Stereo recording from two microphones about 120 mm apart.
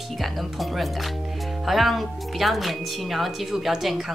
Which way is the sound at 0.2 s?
Centre (ahead or behind).